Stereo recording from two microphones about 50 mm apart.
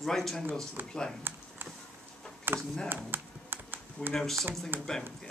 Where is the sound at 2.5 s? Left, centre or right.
Right.